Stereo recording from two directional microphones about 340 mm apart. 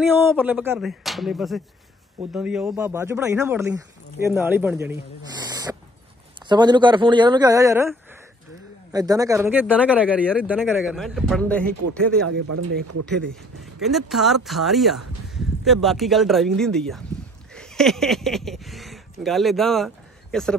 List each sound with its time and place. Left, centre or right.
0.3 s speech: centre
12.4 s speech: right
13.8 s speech: centre